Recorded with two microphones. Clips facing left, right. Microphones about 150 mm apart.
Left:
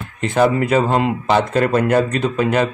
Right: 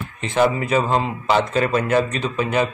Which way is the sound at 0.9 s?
50° left (ahead or behind).